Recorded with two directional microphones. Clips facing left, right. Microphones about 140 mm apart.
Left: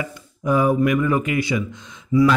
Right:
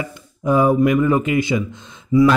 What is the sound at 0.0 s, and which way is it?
Speech, 25° right (ahead or behind).